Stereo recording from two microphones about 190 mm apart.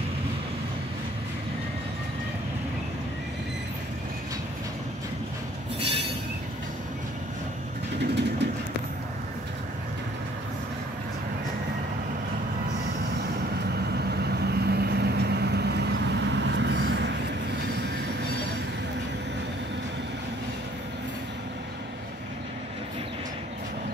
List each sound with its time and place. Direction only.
8.0 s train: 65° right (ahead or behind)
14.4 s vehicle: 60° right (ahead or behind)